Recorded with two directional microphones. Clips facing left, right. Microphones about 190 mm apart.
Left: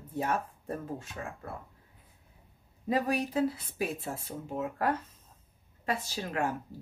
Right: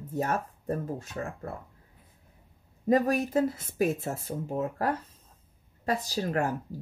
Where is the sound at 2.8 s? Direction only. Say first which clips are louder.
Right 5 dB; 45° right (ahead or behind).